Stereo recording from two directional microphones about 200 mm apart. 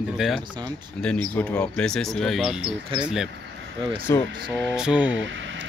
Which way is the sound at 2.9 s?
25° right (ahead or behind).